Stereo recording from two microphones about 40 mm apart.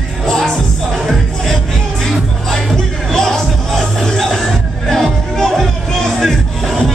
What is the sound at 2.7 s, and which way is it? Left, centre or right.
Music, centre.